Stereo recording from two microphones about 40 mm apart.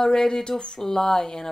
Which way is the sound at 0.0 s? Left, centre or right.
Centre.